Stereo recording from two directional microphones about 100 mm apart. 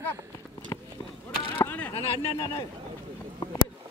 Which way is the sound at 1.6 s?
20° left (ahead or behind).